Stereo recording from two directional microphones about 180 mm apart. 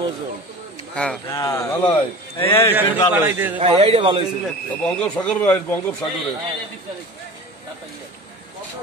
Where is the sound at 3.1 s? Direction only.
10° right (ahead or behind).